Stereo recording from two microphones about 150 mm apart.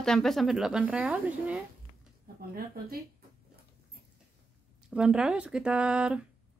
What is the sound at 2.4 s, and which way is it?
Speech, 80° right.